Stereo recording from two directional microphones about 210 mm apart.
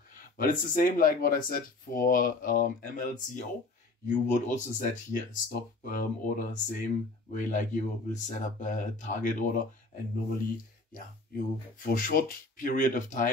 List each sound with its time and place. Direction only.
0.1 s speech: 40° left (ahead or behind)
10.9 s speech: 40° left (ahead or behind)